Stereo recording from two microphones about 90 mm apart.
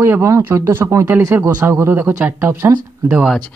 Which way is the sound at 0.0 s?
30° right (ahead or behind).